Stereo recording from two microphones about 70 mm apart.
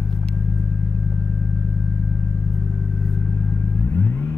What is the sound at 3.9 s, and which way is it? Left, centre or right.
Vehicle, left.